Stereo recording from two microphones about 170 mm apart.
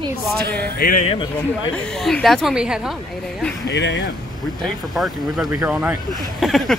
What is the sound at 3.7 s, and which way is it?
Speech, 90° left.